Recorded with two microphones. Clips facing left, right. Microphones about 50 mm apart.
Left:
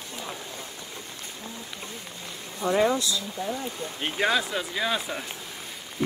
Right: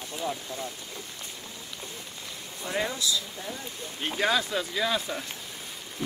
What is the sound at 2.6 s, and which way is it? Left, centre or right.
Speech, left.